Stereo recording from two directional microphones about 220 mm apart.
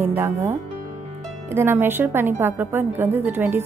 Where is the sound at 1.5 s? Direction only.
10° right (ahead or behind).